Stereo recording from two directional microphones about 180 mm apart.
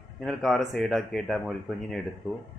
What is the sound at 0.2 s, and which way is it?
Speech, centre (ahead or behind).